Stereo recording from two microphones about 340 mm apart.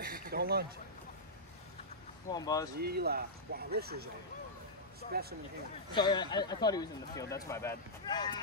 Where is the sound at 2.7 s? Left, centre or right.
Right.